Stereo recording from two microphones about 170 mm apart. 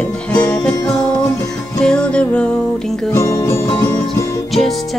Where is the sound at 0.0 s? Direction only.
10° left (ahead or behind).